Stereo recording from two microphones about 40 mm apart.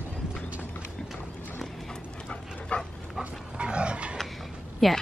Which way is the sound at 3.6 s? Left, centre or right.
Right.